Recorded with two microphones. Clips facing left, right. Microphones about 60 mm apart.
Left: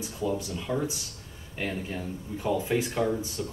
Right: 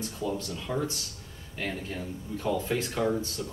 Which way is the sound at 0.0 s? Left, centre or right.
Centre.